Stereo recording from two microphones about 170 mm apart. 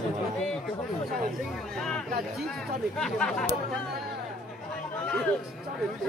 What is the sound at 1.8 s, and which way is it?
Speech, 5° left (ahead or behind).